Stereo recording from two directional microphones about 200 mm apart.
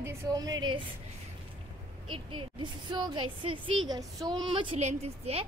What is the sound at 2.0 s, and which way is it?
A woman's voice, 25° right (ahead or behind).